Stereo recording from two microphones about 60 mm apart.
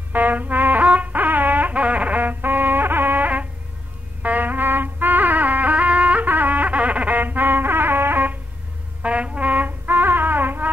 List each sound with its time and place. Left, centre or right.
0.1 s music: right
9.0 s music: right